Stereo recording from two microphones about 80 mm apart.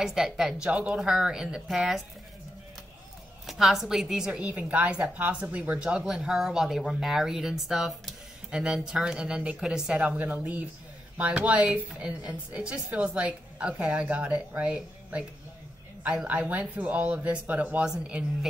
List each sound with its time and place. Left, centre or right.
0.0 s a woman's voice: centre
3.4 s a woman's voice: centre